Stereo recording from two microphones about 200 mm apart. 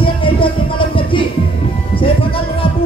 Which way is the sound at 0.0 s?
25° left (ahead or behind).